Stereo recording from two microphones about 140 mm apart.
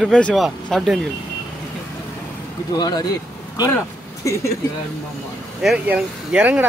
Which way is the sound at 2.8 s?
30° left (ahead or behind).